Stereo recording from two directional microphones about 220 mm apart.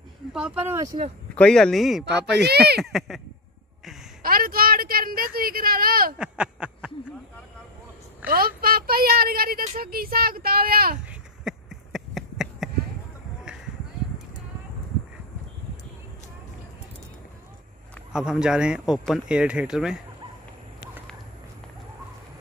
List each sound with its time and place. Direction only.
0.3 s speech: 5° right (ahead or behind)
1.3 s speech: 5° left (ahead or behind)
2.4 s speech: 45° right (ahead or behind)
2.8 s speech: centre (ahead or behind)
4.2 s a woman's voice: 40° right (ahead or behind)
6.1 s a sound: 5° right (ahead or behind)
8.3 s speech: 40° right (ahead or behind)
11.1 s a sound: centre (ahead or behind)
18.1 s speech: 5° right (ahead or behind)